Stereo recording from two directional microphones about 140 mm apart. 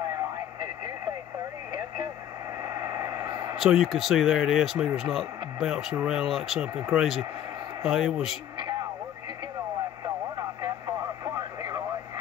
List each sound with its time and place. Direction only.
2.6 s a sound: 25° right (ahead or behind)
3.5 s speech: centre (ahead or behind)
10.0 s radio: 30° right (ahead or behind)